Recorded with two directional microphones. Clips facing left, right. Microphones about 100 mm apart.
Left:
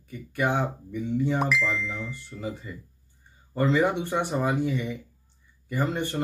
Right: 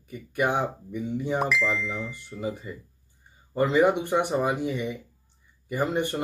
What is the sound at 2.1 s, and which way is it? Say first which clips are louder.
Speech: right 2 dB; 15° right (ahead or behind).